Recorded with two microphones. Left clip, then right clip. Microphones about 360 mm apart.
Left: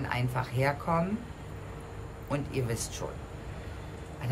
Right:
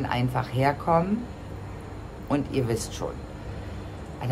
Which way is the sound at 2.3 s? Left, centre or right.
Centre.